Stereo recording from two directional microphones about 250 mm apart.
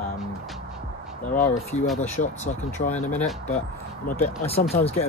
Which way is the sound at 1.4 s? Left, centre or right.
Left.